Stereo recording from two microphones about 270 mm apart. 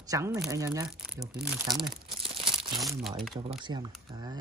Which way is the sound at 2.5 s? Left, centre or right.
Centre.